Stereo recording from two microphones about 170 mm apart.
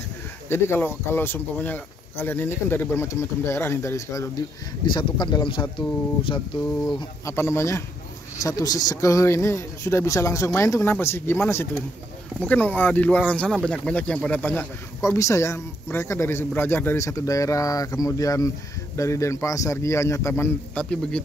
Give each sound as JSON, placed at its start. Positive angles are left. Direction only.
{"t": 0.5, "sound": "speech", "side_deg": 15}
{"t": 7.0, "sound": "speech", "side_deg": 15}
{"t": 12.4, "sound": "speech", "side_deg": 10}